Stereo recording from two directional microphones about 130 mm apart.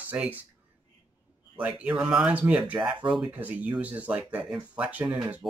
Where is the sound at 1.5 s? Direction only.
10° right (ahead or behind).